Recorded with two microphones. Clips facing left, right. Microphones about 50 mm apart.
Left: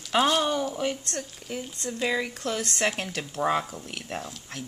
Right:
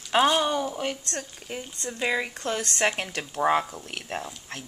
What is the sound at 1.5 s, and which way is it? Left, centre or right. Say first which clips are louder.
Speech: left 1 dB; right.